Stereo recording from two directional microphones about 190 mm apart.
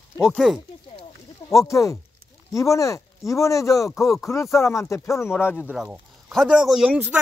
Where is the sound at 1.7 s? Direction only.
15° left (ahead or behind).